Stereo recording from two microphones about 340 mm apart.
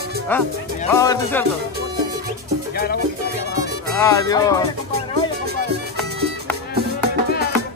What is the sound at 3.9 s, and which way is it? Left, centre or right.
Speech, centre.